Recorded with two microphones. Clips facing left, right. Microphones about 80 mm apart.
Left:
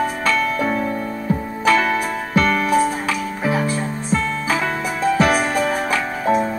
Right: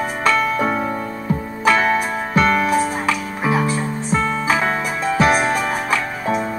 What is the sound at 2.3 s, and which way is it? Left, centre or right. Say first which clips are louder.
Music: even; right.